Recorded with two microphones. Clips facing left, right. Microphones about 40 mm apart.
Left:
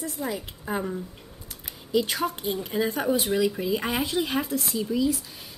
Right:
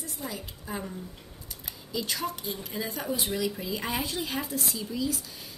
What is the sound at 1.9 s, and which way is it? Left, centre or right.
Speech, left.